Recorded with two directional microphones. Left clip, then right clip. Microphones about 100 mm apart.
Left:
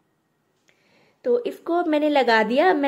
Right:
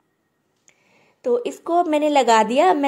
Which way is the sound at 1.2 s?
40° right (ahead or behind).